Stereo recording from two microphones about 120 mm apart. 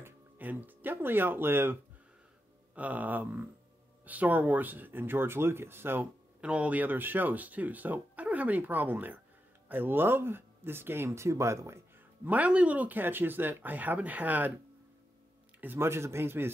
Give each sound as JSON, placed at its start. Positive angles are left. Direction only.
{"t": 0.0, "sound": "speech", "side_deg": -15}
{"t": 12.3, "sound": "speech", "side_deg": -10}
{"t": 15.6, "sound": "speech", "side_deg": -20}